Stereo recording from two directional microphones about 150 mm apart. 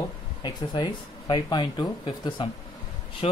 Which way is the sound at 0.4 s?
30° left (ahead or behind).